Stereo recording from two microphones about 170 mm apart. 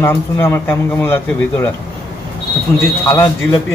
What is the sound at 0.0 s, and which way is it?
A man's voice, 15° left (ahead or behind).